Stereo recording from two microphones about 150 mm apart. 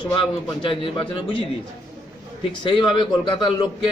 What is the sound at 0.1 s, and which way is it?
Speech, 35° left (ahead or behind).